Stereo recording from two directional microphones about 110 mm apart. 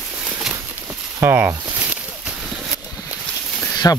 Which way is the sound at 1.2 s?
20° right (ahead or behind).